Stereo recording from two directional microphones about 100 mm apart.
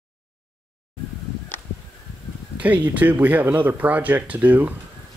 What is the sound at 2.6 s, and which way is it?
Speech, 15° right (ahead or behind).